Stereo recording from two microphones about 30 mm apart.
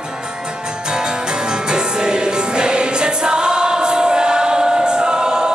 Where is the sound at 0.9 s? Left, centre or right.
Right.